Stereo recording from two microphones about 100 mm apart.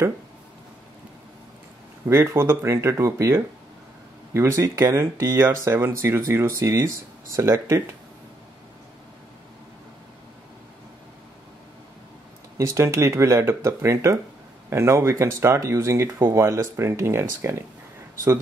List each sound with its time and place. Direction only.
2.0 s speech: 30° right (ahead or behind)
12.5 s speech: 30° right (ahead or behind)